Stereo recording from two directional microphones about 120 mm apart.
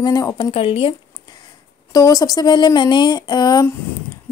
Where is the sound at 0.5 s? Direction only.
55° left (ahead or behind).